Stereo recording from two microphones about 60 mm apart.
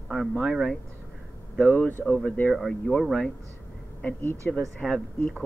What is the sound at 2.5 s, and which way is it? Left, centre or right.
Speech, centre.